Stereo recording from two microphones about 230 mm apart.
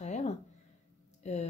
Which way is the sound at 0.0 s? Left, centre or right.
Left.